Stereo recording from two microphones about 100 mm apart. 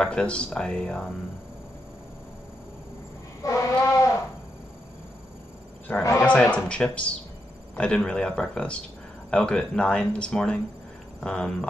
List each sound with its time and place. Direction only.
0.0 s speech: 10° left (ahead or behind)
3.4 s a sound: 30° left (ahead or behind)
5.9 s speech: 15° left (ahead or behind)